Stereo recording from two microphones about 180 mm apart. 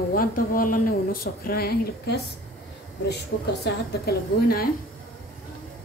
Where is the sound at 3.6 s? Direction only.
60° left (ahead or behind).